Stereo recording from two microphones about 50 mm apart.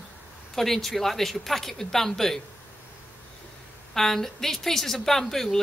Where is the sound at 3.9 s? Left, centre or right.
Centre.